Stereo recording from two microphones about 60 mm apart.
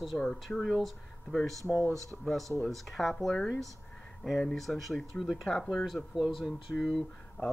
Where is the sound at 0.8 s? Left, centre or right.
Centre.